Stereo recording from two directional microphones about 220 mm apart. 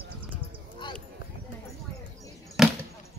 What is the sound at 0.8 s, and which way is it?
Clip-clop, 20° left (ahead or behind).